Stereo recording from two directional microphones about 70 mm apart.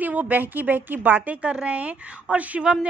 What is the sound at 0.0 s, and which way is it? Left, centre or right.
A woman's voice, right.